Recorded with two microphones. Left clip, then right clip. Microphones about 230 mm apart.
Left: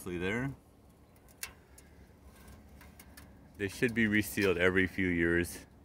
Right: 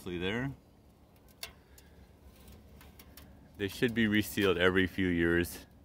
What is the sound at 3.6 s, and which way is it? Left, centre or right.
Speech, centre.